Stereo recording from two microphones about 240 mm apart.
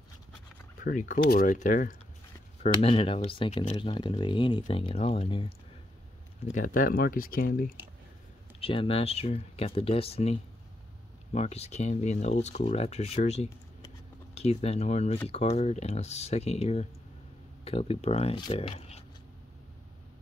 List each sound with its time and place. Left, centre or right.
0.7 s speech: left
6.5 s speech: left
8.5 s speech: left
11.3 s speech: left